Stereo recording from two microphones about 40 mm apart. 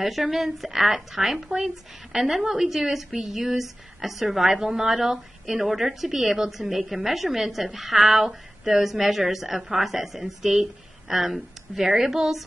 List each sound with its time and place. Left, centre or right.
0.0 s a woman's voice: centre